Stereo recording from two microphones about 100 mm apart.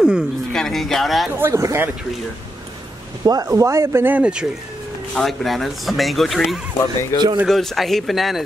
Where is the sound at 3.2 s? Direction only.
40° right (ahead or behind).